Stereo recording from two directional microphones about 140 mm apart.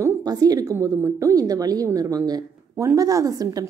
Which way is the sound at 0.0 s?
25° right (ahead or behind).